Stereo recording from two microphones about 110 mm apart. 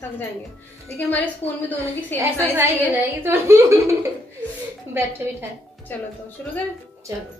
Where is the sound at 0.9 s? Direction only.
15° left (ahead or behind).